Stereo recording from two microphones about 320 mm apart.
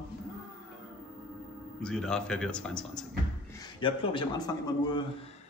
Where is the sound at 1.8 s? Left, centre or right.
Centre.